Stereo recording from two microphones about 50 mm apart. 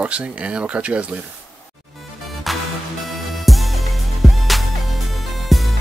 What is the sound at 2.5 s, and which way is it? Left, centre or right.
Music, centre.